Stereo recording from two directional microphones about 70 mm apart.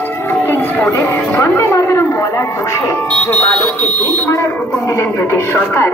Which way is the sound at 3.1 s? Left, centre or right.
Left.